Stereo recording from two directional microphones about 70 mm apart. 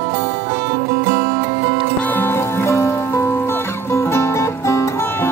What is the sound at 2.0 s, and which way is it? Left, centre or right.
Music, left.